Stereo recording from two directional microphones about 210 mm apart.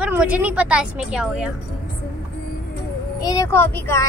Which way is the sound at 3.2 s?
15° left (ahead or behind).